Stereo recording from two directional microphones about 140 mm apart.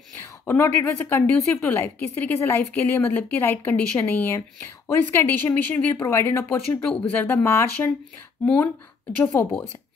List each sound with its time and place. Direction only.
0.5 s a woman's voice: 15° left (ahead or behind)
9.2 s a woman's voice: 15° left (ahead or behind)